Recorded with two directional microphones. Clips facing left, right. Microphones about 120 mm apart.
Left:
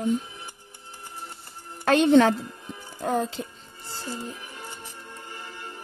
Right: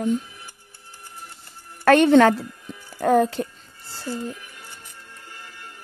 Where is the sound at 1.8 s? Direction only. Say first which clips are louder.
Right 4 dB; 70° right (ahead or behind).